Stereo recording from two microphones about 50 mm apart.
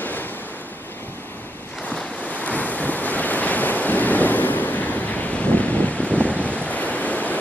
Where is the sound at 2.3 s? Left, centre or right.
Left.